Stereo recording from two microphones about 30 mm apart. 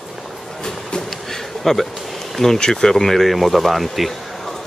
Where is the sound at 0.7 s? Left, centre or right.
Centre.